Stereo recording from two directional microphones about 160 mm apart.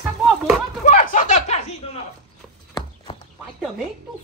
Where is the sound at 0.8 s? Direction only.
50° left (ahead or behind).